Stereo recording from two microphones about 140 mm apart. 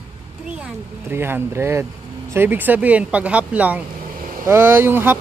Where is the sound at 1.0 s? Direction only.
15° right (ahead or behind).